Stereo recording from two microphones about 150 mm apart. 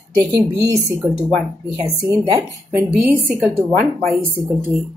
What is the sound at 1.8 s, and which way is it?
A woman's voice, 25° right (ahead or behind).